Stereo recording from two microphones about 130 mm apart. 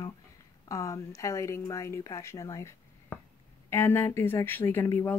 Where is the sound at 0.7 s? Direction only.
25° left (ahead or behind).